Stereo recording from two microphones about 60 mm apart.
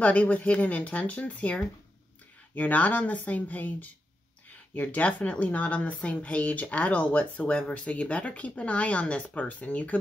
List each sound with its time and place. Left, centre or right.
0.0 s speech: left